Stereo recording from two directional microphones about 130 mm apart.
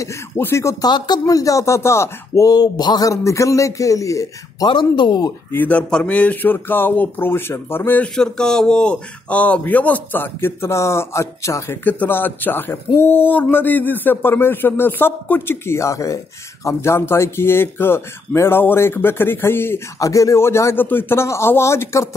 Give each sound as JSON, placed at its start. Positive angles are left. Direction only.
{"t": 0.0, "sound": "speech", "side_deg": 20}
{"t": 5.5, "sound": "speech", "side_deg": 15}